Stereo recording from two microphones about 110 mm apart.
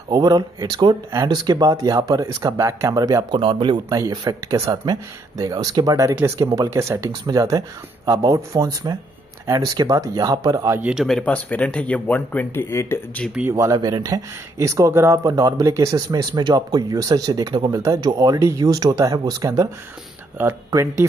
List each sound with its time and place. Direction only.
0.1 s speech: 40° right (ahead or behind)
3.3 s speech: 50° right (ahead or behind)
3.9 s speech: 35° right (ahead or behind)
10.8 s speech: 10° right (ahead or behind)
11.1 s speech: 10° left (ahead or behind)
13.5 s speech: 30° right (ahead or behind)
13.7 s speech: 40° right (ahead or behind)